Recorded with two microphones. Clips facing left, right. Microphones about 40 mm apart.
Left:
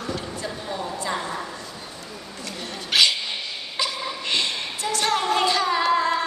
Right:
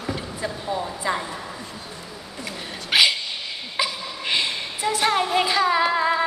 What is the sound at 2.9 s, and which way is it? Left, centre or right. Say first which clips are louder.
Dog: right 1 dB; centre.